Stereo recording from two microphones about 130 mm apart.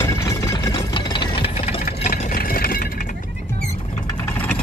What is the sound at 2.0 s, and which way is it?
Vehicle, 80° left.